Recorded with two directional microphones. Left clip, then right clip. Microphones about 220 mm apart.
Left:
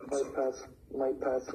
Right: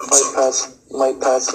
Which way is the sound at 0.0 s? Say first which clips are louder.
Right 16 dB; 55° right (ahead or behind).